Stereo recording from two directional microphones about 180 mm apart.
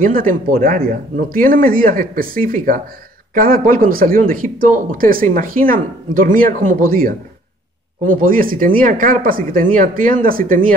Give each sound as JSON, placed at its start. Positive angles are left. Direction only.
{"t": 0.0, "sound": "speech", "side_deg": -50}